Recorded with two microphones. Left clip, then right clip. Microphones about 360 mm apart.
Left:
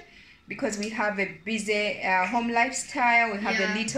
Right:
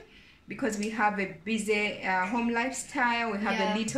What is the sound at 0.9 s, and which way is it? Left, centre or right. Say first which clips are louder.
Speech: right 1 dB; centre.